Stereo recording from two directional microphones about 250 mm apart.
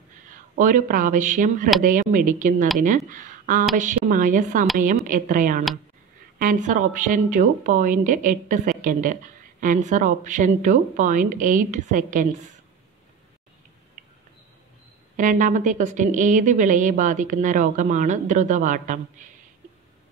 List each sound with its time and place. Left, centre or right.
0.3 s a woman's voice: right
15.1 s a woman's voice: right